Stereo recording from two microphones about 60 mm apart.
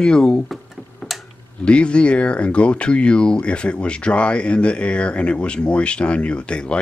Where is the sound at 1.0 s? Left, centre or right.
Centre.